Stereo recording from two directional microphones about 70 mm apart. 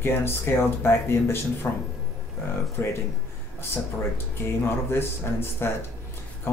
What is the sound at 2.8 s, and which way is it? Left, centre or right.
Speech, left.